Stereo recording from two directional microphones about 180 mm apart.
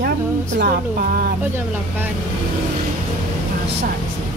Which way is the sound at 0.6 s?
55° right (ahead or behind).